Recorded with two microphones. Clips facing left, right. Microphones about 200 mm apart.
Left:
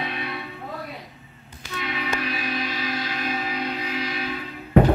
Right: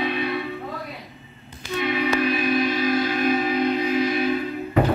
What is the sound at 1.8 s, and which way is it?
Train, 55° right (ahead or behind).